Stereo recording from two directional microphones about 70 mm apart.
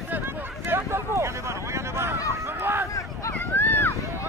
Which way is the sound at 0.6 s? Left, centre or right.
Right.